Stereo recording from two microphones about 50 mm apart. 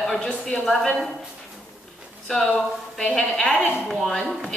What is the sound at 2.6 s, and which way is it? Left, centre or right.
A woman's voice, centre.